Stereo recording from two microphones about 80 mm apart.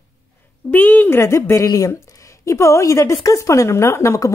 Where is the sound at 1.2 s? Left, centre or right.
Left.